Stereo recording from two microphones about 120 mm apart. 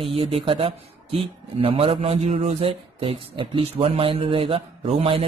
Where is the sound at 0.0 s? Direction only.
50° right (ahead or behind).